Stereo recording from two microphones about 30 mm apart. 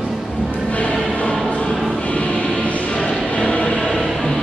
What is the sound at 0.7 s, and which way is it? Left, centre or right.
Music, left.